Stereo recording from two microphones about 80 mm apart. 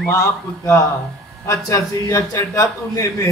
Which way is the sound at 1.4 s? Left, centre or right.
Left.